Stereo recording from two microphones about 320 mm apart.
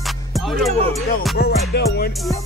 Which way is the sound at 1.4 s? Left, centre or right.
Left.